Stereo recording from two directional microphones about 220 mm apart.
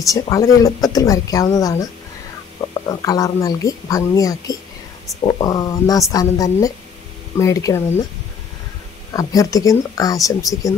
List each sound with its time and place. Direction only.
0.0 s speech: 15° left (ahead or behind)
9.1 s speech: 15° left (ahead or behind)